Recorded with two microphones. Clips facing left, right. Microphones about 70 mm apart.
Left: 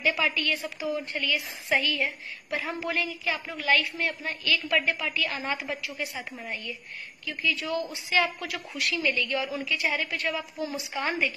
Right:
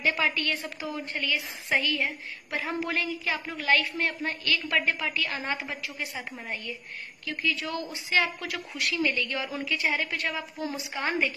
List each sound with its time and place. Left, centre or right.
0.0 s a woman's voice: right
7.2 s a woman's voice: right